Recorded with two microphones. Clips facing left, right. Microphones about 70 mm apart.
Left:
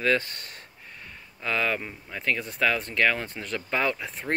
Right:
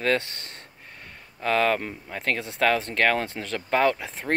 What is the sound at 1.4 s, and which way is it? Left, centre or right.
Speech, right.